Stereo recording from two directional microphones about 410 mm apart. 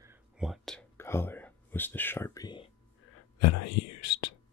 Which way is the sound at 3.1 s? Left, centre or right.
Left.